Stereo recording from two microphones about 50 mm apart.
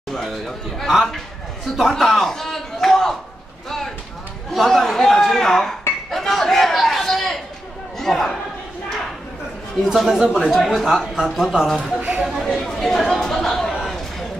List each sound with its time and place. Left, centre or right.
0.1 s a man's voice: centre
1.8 s a sound: centre
4.5 s a sound: centre
8.0 s speech: centre
9.8 s speech: centre
10.5 s a woman's voice: centre
12.0 s speech: centre
12.3 s chatter: centre
13.7 s a sound: centre